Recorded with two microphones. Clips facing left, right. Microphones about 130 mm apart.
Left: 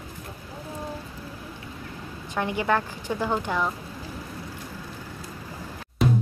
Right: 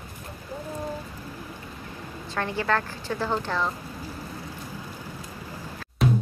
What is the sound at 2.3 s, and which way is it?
A woman's voice, 15° left (ahead or behind).